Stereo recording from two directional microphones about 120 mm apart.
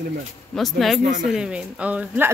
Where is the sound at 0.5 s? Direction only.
Centre (ahead or behind).